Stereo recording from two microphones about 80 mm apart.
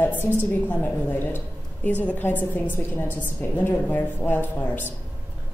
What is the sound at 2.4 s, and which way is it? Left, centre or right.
A woman's voice, left.